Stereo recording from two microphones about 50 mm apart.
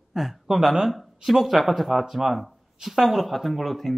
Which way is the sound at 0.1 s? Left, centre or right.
Centre.